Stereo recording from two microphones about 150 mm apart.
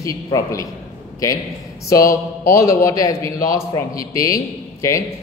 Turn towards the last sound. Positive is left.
turn(degrees=20)  # may be behind; listen again after turning